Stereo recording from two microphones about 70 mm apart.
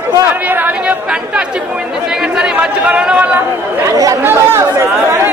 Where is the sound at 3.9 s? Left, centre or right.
Right.